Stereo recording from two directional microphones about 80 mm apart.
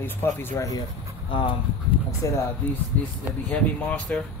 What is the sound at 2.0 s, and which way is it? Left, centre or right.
Speech, left.